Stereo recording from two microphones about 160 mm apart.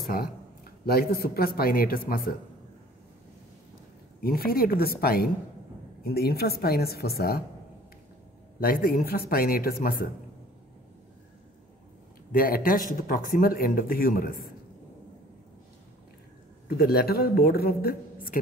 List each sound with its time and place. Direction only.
0.0 s a man's voice: 65° left (ahead or behind)
4.2 s a woman's voice: 70° left (ahead or behind)
8.5 s a woman's voice: 65° left (ahead or behind)
12.3 s speech: 65° left (ahead or behind)
16.6 s a woman's voice: 75° left (ahead or behind)